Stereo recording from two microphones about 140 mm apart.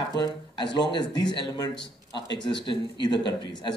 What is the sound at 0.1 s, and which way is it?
Speech, 30° left (ahead or behind).